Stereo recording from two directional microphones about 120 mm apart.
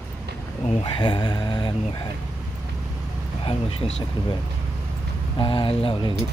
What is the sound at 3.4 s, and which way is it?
Speech, 50° left (ahead or behind).